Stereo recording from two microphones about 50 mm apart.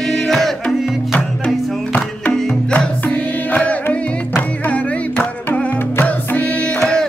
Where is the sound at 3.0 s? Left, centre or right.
Left.